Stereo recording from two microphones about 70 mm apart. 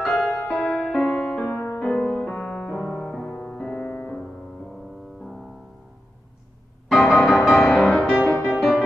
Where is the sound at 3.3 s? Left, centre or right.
Left.